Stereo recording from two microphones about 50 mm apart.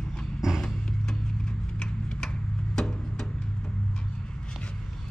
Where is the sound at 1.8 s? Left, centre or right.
Centre.